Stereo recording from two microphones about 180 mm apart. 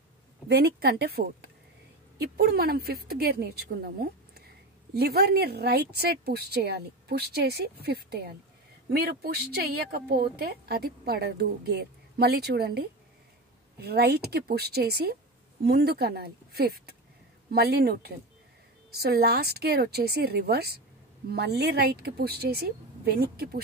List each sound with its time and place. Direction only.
0.5 s speech: 60° right (ahead or behind)